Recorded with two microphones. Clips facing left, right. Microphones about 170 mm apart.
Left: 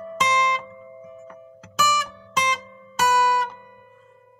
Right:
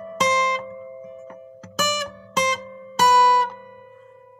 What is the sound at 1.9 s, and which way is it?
Guitar, 45° right (ahead or behind).